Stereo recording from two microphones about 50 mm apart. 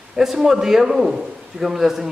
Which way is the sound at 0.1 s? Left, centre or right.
Centre.